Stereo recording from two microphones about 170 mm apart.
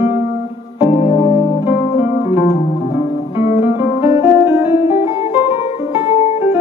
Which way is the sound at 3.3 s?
40° left (ahead or behind).